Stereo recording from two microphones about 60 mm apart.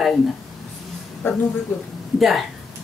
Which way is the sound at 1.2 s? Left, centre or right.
Left.